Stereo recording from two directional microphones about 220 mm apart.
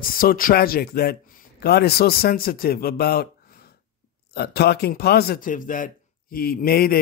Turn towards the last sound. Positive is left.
turn(degrees=40)  # may be behind; listen again after turning